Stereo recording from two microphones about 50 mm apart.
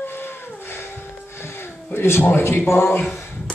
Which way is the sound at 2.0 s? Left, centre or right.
Left.